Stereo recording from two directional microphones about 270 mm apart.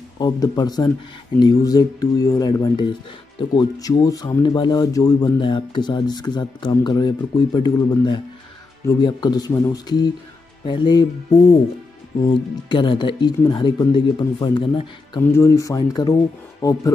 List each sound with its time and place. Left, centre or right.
0.2 s speech: centre
12.2 s speech: centre